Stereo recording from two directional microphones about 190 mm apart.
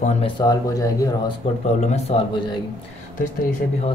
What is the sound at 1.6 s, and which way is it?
Speech, 35° left (ahead or behind).